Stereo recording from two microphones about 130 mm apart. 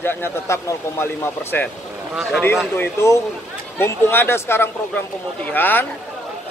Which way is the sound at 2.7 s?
20° left (ahead or behind).